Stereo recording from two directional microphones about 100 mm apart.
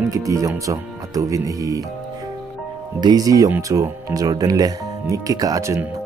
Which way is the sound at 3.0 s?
40° right (ahead or behind).